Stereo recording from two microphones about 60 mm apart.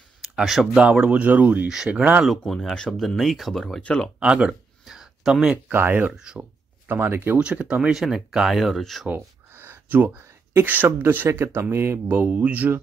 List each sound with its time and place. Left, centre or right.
0.2 s a sound: centre
0.7 s speech: centre
1.2 s speech: right
2.2 s speech: centre
4.2 s a sound: centre
5.7 s speech: right
6.1 s speech: centre
6.9 s speech: right
7.3 s speech: centre
7.9 s speech: centre
9.1 s a sound: right
10.6 s speech: right
11.2 s speech: right
12.3 s speech: right